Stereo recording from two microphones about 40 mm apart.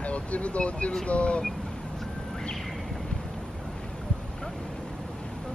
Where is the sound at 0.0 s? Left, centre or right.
Left.